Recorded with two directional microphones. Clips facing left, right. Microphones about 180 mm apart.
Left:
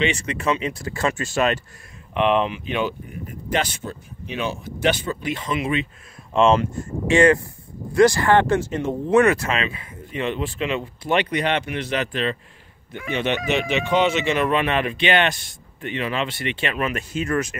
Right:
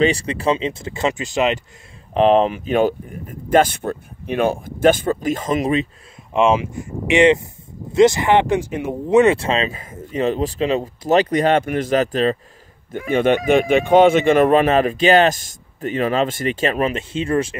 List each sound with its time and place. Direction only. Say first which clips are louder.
0.0 s speech: right 5 dB; 35° right (ahead or behind); by 1.6 s 15° right (ahead or behind)
2.1 s speech: right 6 dB; 35° right (ahead or behind)
6.3 s speech: right 1 dB; 10° right (ahead or behind); by 16.9 s 40° right (ahead or behind)
16.9 s speech: right 4 dB; 30° right (ahead or behind)